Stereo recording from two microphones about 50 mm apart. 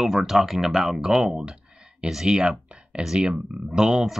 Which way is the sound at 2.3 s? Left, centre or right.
Centre.